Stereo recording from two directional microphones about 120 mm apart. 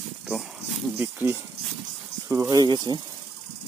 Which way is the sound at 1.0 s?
20° right (ahead or behind).